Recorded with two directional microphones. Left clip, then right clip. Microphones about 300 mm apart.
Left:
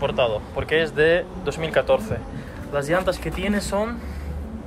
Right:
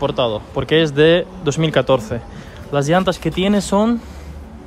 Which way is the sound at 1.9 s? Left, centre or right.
Right.